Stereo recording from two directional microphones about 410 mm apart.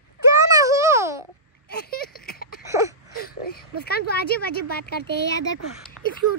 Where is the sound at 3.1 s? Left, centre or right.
Left.